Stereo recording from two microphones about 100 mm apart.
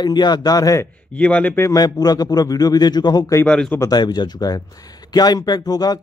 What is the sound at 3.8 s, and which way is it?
Speech, 45° left (ahead or behind).